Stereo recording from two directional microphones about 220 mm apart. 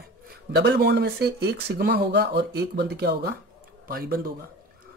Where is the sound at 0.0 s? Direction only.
45° right (ahead or behind).